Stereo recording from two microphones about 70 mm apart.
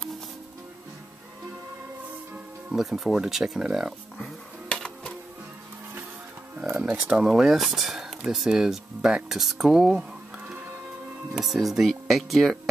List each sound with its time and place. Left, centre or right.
2.7 s speech: centre
4.6 s music: centre
6.6 s speech: centre
11.3 s speech: centre